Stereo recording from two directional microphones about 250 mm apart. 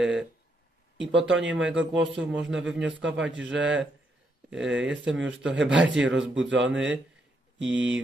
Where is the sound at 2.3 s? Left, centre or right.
Right.